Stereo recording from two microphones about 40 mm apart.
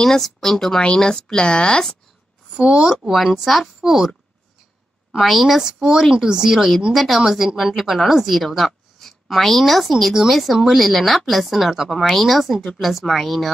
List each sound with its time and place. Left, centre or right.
0.0 s speech: centre
2.5 s speech: centre
3.1 s a woman's voice: centre
5.1 s a woman's voice: centre